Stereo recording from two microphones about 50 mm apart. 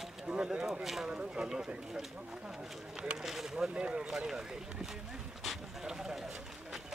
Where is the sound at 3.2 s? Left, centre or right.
Centre.